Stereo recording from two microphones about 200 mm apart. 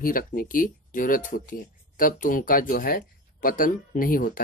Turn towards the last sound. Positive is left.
turn(degrees=45)  # may be behind; listen again after turning